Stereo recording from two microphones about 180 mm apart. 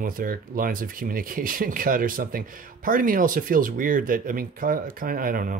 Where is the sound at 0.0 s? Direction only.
50° right (ahead or behind).